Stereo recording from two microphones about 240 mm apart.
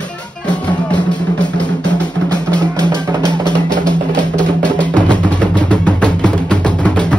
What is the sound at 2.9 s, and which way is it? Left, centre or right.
Music, centre.